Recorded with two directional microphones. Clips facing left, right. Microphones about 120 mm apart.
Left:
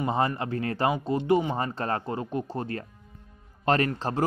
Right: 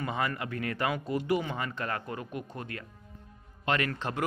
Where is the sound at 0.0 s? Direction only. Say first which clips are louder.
Left 6 dB; 30° left (ahead or behind).